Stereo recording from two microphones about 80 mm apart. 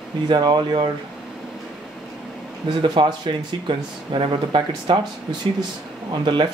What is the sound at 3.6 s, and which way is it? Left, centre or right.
Speech, right.